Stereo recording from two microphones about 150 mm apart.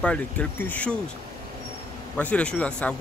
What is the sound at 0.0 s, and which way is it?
Speech, 5° left (ahead or behind).